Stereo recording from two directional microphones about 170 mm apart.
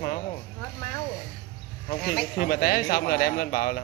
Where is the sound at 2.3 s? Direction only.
55° left (ahead or behind).